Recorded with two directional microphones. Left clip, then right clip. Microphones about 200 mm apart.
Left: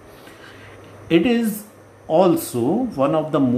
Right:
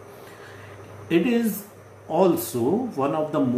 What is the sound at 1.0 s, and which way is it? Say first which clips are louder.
Speech: left 4 dB; 45° left (ahead or behind).